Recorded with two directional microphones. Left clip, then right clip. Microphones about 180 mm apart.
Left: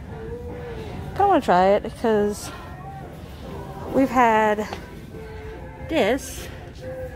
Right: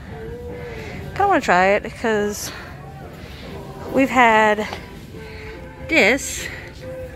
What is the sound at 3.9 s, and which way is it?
Speech, centre (ahead or behind).